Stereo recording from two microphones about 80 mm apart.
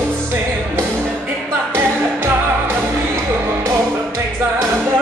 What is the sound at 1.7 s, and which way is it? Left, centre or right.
Music, right.